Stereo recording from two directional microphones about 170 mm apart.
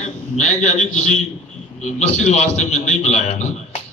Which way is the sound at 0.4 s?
40° left (ahead or behind).